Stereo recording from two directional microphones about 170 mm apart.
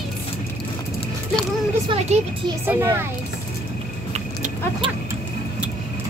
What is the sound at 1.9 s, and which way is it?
Speech, 30° right (ahead or behind).